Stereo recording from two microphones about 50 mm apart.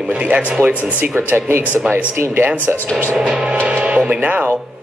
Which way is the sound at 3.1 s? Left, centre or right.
Centre.